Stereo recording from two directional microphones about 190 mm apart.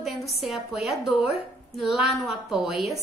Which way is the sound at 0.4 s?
Centre (ahead or behind).